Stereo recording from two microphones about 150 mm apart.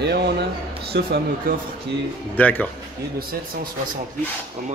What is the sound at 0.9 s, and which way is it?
Speech, 90° right.